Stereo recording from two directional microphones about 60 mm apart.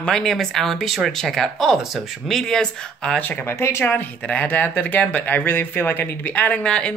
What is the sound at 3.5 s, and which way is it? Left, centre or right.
Speech, left.